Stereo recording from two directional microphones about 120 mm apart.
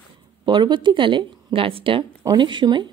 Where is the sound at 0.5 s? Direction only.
40° right (ahead or behind).